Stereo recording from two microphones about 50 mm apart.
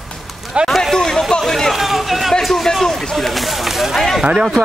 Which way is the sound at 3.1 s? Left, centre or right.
Centre.